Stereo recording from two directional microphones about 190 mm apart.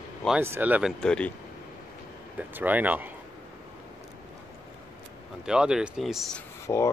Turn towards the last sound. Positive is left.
turn(degrees=15)  # may be behind; listen again after turning